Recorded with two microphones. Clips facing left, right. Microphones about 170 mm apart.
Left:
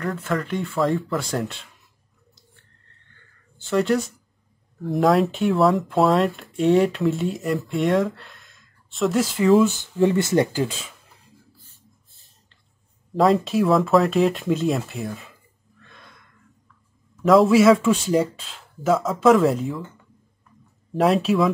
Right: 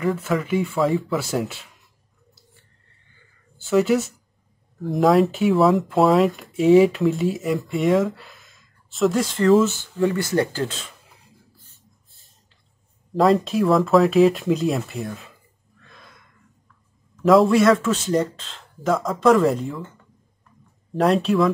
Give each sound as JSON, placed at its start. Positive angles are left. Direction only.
{"t": 0.0, "sound": "speech", "side_deg": -5}
{"t": 3.2, "sound": "a sound", "side_deg": -10}
{"t": 4.8, "sound": "speech", "side_deg": 0}
{"t": 9.9, "sound": "speech", "side_deg": 25}
{"t": 13.1, "sound": "speech", "side_deg": 0}
{"t": 15.8, "sound": "a sound", "side_deg": 0}
{"t": 17.2, "sound": "speech", "side_deg": 0}
{"t": 20.9, "sound": "speech", "side_deg": 0}